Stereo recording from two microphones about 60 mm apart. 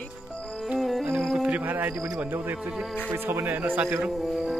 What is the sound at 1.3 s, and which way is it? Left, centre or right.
Speech, right.